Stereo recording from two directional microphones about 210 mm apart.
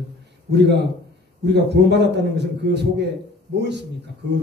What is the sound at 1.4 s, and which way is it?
A man's voice, 55° right (ahead or behind).